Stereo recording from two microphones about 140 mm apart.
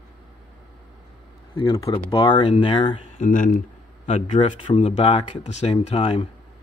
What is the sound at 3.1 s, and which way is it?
Speech, 70° left (ahead or behind).